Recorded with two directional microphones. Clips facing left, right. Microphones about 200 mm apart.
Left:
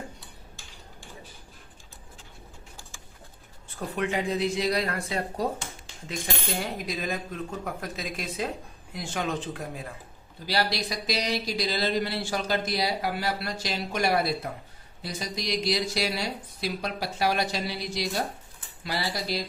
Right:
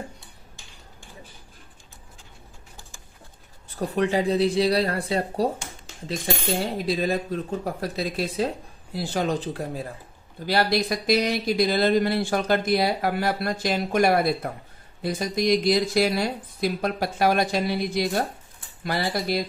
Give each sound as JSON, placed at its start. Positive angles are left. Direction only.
{"t": 3.6, "sound": "speech", "side_deg": -40}
{"t": 6.6, "sound": "speech", "side_deg": -30}
{"t": 10.4, "sound": "speech", "side_deg": -50}